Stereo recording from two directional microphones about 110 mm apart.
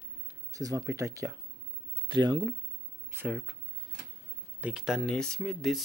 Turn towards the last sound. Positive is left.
turn(degrees=5)  # may be behind; listen again after turning